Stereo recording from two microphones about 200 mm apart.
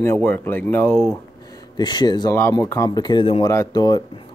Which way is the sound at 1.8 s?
20° left (ahead or behind).